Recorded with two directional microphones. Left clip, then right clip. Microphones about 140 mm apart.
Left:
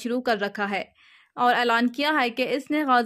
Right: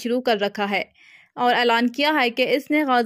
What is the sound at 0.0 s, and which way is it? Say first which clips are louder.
Speech: right 4 dB; 15° right (ahead or behind).